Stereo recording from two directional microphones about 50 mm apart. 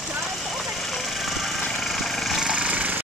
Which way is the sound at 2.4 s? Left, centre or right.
Right.